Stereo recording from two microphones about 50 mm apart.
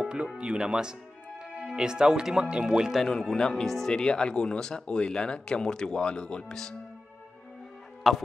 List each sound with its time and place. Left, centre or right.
0.0 s music: centre
0.4 s speech: centre
3.1 s speech: centre
8.0 s speech: centre